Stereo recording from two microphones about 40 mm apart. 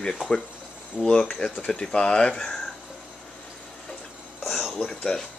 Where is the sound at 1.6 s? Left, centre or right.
Left.